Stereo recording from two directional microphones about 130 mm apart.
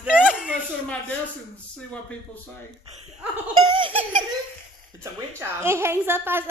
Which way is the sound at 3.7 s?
40° right (ahead or behind).